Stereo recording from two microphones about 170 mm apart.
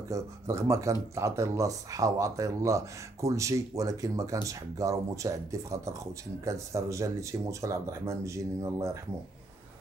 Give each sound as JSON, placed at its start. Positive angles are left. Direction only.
{"t": 0.1, "sound": "speech", "side_deg": -15}